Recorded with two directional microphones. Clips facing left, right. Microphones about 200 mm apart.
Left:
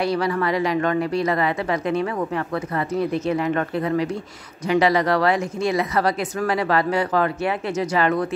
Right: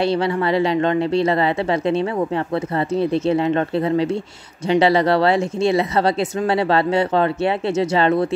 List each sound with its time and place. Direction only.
0.0 s speech: 25° right (ahead or behind)